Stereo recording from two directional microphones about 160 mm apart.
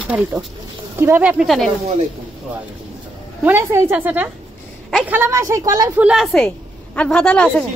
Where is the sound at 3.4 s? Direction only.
15° right (ahead or behind).